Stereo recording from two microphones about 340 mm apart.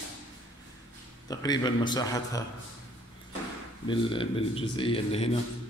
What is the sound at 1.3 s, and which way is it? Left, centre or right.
A man's voice, centre.